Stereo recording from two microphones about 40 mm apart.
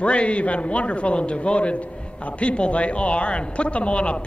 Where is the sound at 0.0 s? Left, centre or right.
Left.